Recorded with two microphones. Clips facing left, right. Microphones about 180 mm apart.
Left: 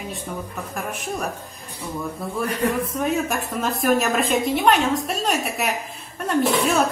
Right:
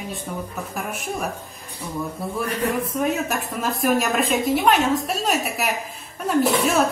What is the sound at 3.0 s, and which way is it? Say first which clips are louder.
A woman's voice: even; centre (ahead or behind).